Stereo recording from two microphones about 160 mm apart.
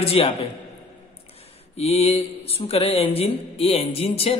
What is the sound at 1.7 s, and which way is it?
Mantra, 40° left (ahead or behind).